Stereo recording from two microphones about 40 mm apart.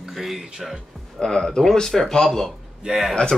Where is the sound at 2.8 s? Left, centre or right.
Centre.